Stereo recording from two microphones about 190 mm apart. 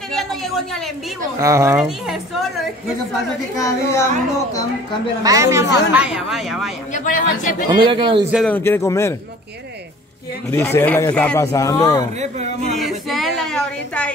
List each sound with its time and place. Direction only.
0.1 s a sound: centre (ahead or behind)
1.4 s speech: 15° right (ahead or behind)
1.9 s speech: centre (ahead or behind)
3.5 s speech: 15° left (ahead or behind)
5.2 s speech: 15° right (ahead or behind)
6.0 s speech: 5° right (ahead or behind)
6.9 s speech: 45° left (ahead or behind)
7.7 s speech: 25° right (ahead or behind)
8.5 s speech: 10° left (ahead or behind)
10.5 s speech: 15° left (ahead or behind)
11.5 s speech: 15° left (ahead or behind)
12.2 s a man's voice: 35° right (ahead or behind)
12.7 s a sound: centre (ahead or behind)